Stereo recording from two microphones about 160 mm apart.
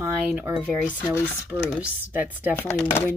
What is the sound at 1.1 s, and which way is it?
Speech, 15° left (ahead or behind).